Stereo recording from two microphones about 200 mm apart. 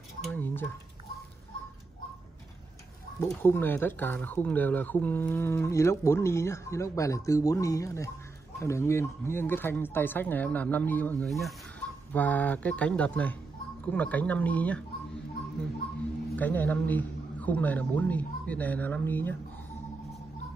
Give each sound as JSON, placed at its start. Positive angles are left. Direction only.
{"t": 0.3, "sound": "a sound", "side_deg": 10}
{"t": 3.4, "sound": "speech", "side_deg": 10}
{"t": 16.3, "sound": "a man's voice", "side_deg": 10}